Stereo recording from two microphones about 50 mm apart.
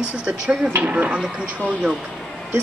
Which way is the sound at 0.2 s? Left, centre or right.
Right.